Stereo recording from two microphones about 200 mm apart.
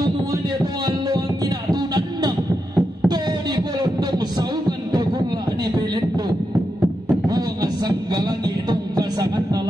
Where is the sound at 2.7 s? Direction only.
20° right (ahead or behind).